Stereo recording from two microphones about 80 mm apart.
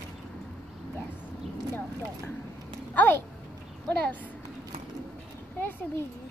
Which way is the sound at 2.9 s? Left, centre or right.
Left.